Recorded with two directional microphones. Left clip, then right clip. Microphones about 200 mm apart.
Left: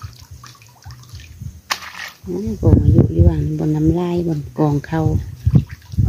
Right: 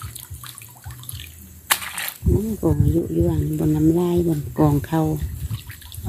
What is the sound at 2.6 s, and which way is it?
Speech, 15° left (ahead or behind).